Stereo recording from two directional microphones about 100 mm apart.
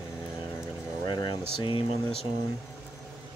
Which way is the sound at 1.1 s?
50° left (ahead or behind).